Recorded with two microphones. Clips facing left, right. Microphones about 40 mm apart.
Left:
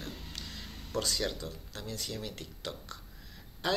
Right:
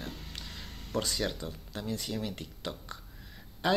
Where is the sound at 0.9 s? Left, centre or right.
Centre.